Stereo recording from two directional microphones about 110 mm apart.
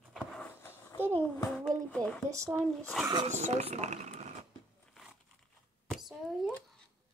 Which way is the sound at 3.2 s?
90° right.